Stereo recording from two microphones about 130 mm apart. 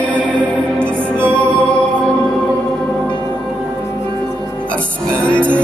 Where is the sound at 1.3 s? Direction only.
10° left (ahead or behind).